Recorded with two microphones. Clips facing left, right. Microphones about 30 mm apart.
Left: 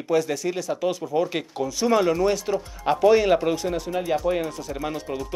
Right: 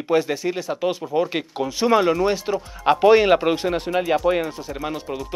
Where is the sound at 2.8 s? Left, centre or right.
Right; by 5.2 s centre.